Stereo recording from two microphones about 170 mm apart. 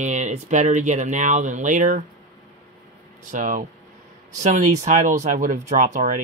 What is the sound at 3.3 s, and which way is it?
Speech, 50° right (ahead or behind).